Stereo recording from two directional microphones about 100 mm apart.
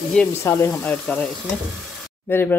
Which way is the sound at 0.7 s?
15° left (ahead or behind).